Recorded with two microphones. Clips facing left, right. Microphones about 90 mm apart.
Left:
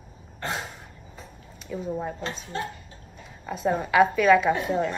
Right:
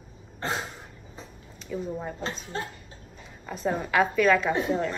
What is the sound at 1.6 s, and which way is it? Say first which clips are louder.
Speech: left 2 dB; centre (ahead or behind).